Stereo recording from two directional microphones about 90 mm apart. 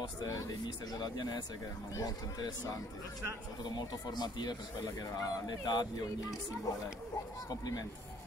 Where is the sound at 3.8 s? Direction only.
50° left (ahead or behind).